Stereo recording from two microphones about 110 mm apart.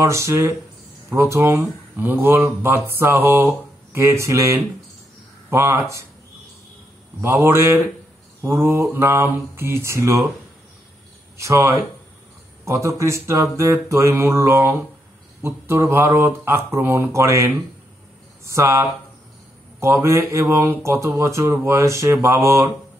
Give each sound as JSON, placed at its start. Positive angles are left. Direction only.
{"t": 0.0, "sound": "speech", "side_deg": -30}
{"t": 7.2, "sound": "speech", "side_deg": -25}
{"t": 8.4, "sound": "mantra", "side_deg": -25}
{"t": 8.9, "sound": "speech", "side_deg": -20}
{"t": 11.3, "sound": "speech", "side_deg": -25}